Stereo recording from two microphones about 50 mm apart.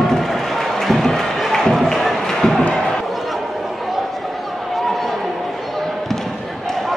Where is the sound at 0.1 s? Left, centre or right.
Centre.